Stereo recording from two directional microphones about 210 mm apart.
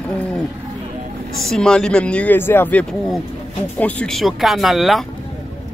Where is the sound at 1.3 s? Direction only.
Centre (ahead or behind).